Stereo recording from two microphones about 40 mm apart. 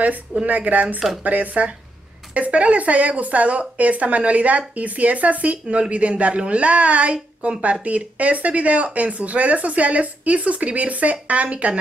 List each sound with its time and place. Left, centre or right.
0.5 s speech: right
0.9 s speech: centre
1.2 s speech: right